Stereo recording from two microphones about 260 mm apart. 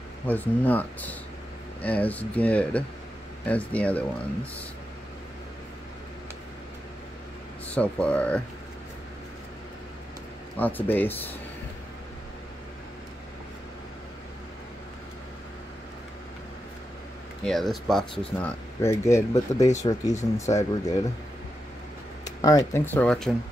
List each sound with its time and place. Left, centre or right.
0.3 s speech: centre
7.7 s speech: centre
10.6 s speech: centre
17.5 s speech: centre
19.7 s speech: left
20.4 s speech: centre
22.2 s speech: centre